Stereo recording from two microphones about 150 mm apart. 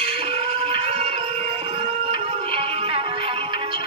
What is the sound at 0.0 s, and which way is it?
Music, 40° right (ahead or behind).